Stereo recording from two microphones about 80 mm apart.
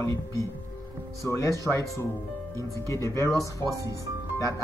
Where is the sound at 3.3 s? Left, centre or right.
Right.